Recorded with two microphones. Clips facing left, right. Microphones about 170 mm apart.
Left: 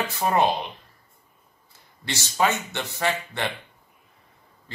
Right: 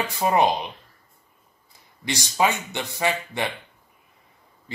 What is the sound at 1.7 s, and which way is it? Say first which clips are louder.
A man's voice: right 4 dB; 15° right (ahead or behind).